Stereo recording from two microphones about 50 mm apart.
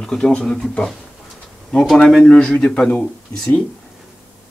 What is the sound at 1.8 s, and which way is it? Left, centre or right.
Speech, centre.